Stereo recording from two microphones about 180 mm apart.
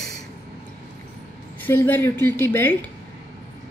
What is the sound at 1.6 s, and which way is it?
A woman's voice, 10° left (ahead or behind).